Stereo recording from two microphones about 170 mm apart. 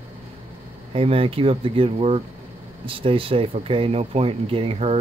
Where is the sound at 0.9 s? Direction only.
35° right (ahead or behind).